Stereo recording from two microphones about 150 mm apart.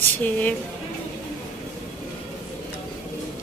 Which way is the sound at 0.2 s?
10° left (ahead or behind).